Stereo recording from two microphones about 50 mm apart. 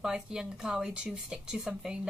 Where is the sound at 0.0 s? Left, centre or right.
Centre.